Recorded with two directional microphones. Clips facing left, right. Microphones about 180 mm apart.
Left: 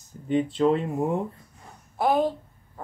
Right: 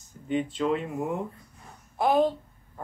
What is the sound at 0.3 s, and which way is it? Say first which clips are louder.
Speech: left 5 dB; 35° left (ahead or behind).